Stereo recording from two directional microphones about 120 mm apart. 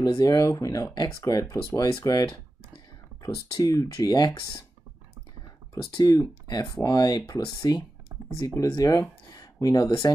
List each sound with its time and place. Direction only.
0.0 s speech: 35° left (ahead or behind)
5.9 s speech: 35° left (ahead or behind)